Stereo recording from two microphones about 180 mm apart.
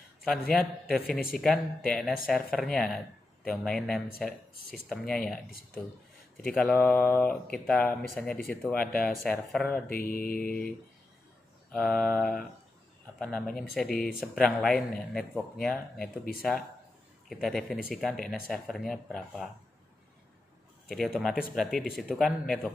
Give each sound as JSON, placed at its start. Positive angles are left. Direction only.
{"t": 0.2, "sound": "speech", "side_deg": 5}
{"t": 9.8, "sound": "mantra", "side_deg": 55}
{"t": 11.7, "sound": "speech", "side_deg": 5}
{"t": 20.9, "sound": "speech", "side_deg": 0}